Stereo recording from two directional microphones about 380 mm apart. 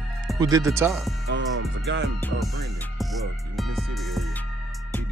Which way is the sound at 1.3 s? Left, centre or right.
Right.